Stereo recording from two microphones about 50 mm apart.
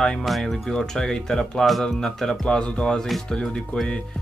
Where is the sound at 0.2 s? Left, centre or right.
Centre.